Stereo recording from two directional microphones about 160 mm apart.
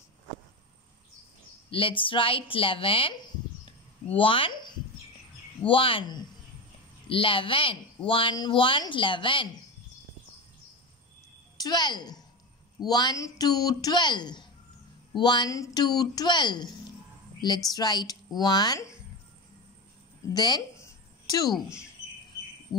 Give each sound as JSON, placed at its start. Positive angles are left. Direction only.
{"t": 1.7, "sound": "speech", "side_deg": 35}
{"t": 4.2, "sound": "speech", "side_deg": 35}
{"t": 11.5, "sound": "a woman's voice", "side_deg": 25}
{"t": 20.3, "sound": "a sound", "side_deg": 25}